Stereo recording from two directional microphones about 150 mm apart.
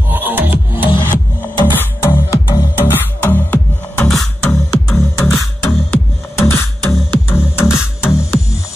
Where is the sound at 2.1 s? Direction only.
15° left (ahead or behind).